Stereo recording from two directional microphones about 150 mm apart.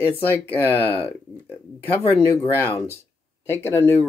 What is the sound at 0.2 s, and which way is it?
Speech, 15° left (ahead or behind).